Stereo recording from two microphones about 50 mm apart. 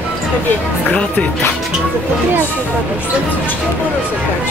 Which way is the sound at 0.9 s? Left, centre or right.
Left.